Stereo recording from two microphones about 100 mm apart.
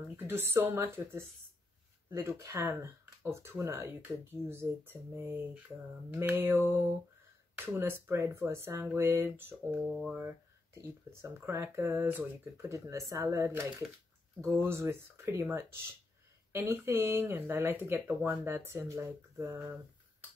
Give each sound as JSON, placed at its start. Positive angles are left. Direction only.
{"t": 0.3, "sound": "speech", "side_deg": -25}
{"t": 12.7, "sound": "speech", "side_deg": -30}
{"t": 16.5, "sound": "speech", "side_deg": -25}